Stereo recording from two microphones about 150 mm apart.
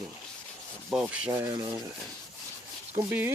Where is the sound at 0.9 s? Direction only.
5° right (ahead or behind).